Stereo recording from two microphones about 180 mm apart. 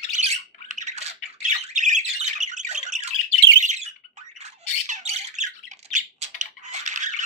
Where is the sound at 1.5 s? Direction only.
40° right (ahead or behind).